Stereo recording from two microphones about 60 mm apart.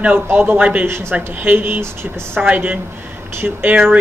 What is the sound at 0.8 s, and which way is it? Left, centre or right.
Speech, right.